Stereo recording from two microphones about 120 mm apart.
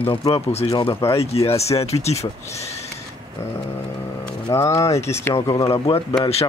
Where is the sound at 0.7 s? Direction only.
40° left (ahead or behind); by 2.3 s 65° left (ahead or behind).